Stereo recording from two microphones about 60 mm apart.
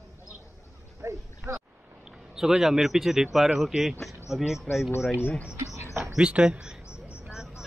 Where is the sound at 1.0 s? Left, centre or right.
Right.